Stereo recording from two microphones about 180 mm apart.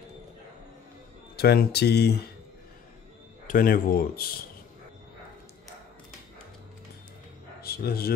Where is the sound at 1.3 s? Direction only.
60° left (ahead or behind).